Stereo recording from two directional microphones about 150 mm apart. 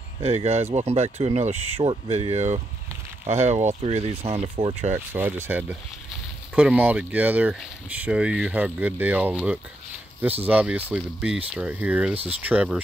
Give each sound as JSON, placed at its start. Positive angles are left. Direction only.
{"t": 0.2, "sound": "speech", "side_deg": -45}
{"t": 4.9, "sound": "speech", "side_deg": -15}